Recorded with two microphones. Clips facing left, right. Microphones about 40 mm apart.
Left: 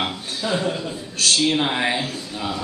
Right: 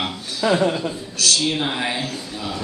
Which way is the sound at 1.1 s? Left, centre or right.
Left.